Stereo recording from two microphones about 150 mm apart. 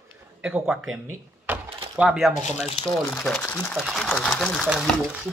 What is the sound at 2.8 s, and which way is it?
Speech, 20° left (ahead or behind).